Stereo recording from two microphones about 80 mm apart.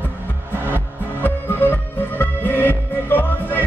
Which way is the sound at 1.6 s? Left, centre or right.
Left.